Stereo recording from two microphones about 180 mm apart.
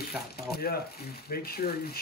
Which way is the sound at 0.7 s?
55° left (ahead or behind).